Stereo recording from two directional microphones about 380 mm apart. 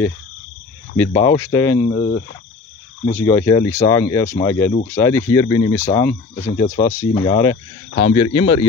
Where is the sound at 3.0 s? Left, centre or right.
Centre.